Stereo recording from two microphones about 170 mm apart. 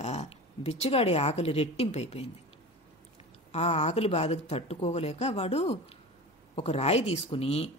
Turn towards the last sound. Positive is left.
turn(degrees=35)  # may be behind; listen again after turning